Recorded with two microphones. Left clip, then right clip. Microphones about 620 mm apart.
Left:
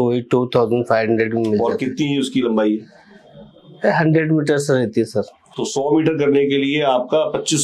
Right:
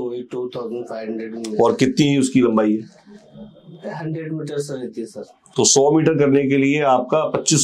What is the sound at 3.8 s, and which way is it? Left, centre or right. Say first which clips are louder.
Speech: left 13 dB; left.